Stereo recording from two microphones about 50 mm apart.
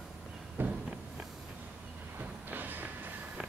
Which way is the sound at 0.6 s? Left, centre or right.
Right.